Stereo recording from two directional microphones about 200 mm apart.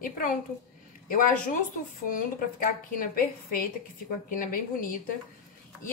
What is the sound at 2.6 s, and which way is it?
A woman's voice, 45° left (ahead or behind).